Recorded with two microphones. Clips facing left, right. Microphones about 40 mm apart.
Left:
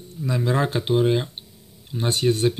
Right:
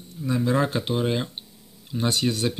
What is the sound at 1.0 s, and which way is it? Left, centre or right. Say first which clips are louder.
Speech: left 6 dB; centre.